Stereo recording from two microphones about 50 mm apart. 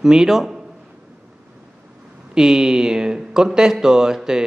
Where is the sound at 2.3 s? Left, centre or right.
Centre.